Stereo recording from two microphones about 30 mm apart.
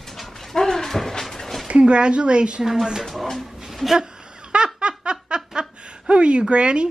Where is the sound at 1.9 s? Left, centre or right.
Right.